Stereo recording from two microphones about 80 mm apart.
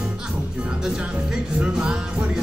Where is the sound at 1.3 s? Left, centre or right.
Centre.